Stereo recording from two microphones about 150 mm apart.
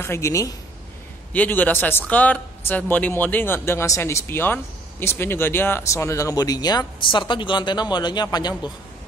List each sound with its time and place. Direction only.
0.0 s speech: 20° left (ahead or behind)